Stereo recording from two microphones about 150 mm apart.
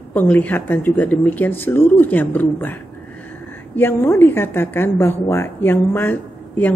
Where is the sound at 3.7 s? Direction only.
15° left (ahead or behind).